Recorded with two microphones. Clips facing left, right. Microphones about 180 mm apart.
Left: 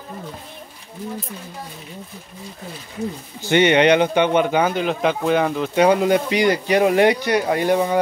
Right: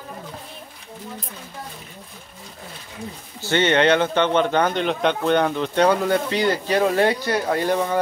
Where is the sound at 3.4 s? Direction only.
15° left (ahead or behind).